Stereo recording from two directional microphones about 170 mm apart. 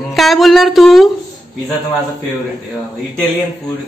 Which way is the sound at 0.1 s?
Centre (ahead or behind).